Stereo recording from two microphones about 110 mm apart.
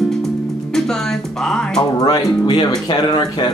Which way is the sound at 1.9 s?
35° left (ahead or behind).